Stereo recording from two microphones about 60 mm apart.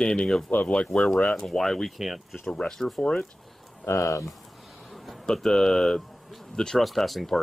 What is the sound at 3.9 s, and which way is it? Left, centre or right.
Speech, left.